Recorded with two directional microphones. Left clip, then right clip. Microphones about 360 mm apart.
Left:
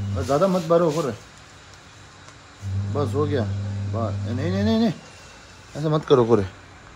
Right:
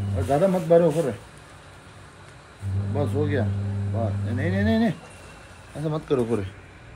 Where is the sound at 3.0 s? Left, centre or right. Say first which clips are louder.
Left 2 dB; centre.